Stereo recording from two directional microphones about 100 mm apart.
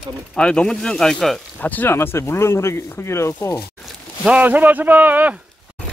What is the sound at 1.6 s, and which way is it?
Speech, 20° left (ahead or behind).